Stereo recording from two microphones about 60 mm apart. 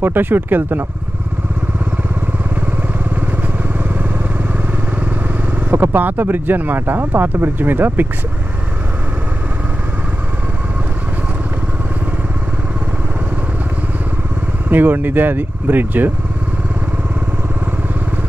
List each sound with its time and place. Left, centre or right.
0.0 s speech: right
5.7 s speech: right
14.7 s speech: right